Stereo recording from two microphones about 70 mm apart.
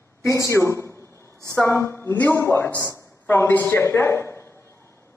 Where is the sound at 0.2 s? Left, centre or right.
Left.